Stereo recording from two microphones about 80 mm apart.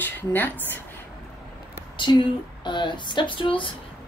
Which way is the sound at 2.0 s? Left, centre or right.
Left.